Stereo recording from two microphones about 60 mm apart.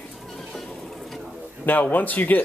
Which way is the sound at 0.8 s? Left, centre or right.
Centre.